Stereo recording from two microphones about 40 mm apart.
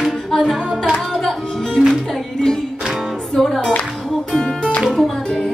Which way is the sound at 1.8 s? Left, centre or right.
Right.